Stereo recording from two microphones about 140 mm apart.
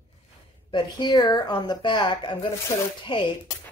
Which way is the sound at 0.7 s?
30° left (ahead or behind).